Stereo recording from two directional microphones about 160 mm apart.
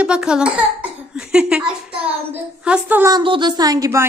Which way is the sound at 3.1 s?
30° right (ahead or behind).